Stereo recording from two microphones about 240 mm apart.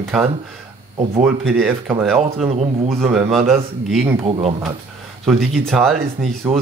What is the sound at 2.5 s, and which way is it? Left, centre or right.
Speech, right.